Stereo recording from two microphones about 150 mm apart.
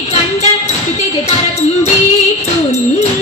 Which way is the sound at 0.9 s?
45° left (ahead or behind).